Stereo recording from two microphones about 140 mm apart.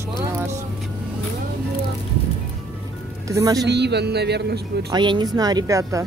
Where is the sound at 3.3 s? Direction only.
25° right (ahead or behind).